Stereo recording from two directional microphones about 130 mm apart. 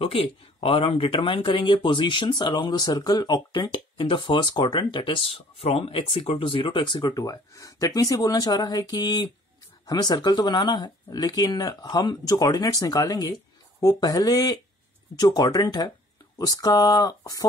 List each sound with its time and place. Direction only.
0.0 s speech: 45° left (ahead or behind); by 17.5 s 30° left (ahead or behind)